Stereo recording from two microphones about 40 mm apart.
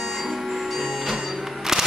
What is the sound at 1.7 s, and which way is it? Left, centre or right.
Music, centre.